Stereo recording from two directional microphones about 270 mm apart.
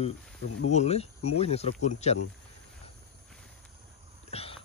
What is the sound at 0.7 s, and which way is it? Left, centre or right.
Speech, left.